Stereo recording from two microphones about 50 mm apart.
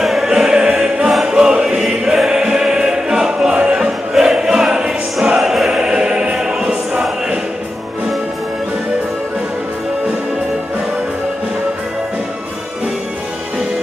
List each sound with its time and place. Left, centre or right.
0.0 s choir: centre